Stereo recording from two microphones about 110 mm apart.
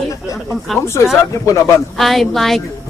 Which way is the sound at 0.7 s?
Centre (ahead or behind).